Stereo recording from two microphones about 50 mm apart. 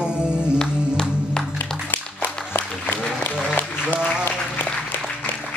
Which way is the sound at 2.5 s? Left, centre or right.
Left.